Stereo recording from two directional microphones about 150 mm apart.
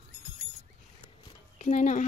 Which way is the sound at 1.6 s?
50° left (ahead or behind).